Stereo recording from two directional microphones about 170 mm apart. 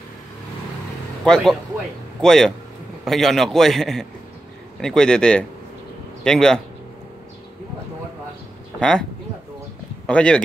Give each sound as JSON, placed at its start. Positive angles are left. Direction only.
{"t": 1.2, "sound": "a man's voice", "side_deg": 0}
{"t": 8.7, "sound": "speech", "side_deg": 5}
{"t": 10.0, "sound": "a man's voice", "side_deg": 5}